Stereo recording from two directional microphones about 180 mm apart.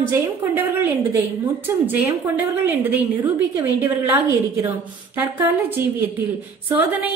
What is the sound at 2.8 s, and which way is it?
A woman's voice, 10° right (ahead or behind).